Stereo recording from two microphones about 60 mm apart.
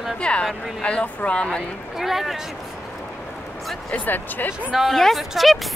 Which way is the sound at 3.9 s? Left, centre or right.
Left.